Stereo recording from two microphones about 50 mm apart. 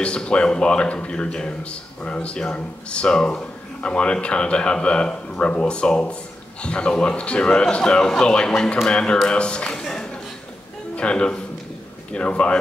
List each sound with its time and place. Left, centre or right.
0.0 s a man's voice: left
11.0 s speech: left